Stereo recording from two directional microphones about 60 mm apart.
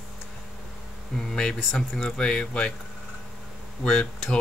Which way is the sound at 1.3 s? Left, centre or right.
Centre.